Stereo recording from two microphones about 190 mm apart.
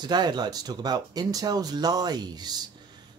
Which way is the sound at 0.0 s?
20° right (ahead or behind).